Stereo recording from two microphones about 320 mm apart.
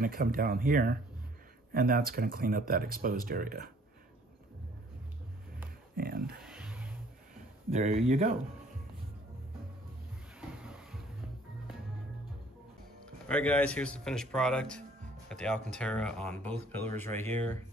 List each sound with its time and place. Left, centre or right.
0.0 s speech: right
5.9 s a sound: right
6.4 s a sound: centre
7.7 s speech: right
10.6 s music: centre
13.3 s speech: centre